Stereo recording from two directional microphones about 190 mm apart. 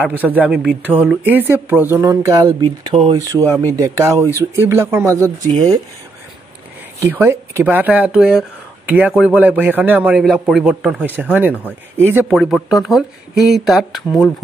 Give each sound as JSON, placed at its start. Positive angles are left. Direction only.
{"t": 0.0, "sound": "speech", "side_deg": -10}
{"t": 7.0, "sound": "speech", "side_deg": -10}